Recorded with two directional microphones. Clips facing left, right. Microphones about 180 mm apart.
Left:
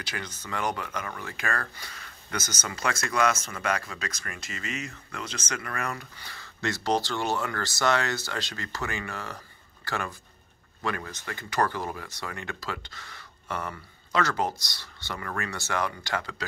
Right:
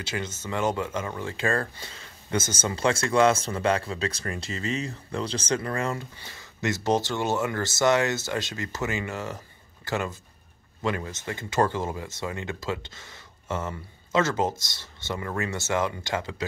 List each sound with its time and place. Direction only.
0.0 s speech: 25° right (ahead or behind)